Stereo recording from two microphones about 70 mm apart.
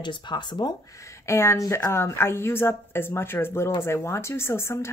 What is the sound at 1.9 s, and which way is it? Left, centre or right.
A woman's voice, left.